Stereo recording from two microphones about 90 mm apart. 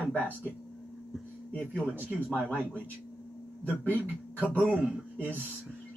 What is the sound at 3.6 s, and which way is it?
Speech, 15° left (ahead or behind).